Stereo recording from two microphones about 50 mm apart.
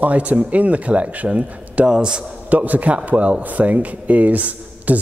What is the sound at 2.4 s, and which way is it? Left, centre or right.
A man's voice, right.